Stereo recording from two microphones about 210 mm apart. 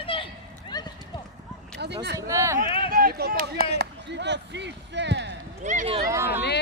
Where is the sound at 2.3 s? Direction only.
15° right (ahead or behind).